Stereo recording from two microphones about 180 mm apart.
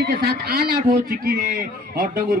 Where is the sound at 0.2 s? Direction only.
60° right (ahead or behind).